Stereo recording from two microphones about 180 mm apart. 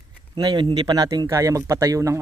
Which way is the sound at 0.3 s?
25° right (ahead or behind).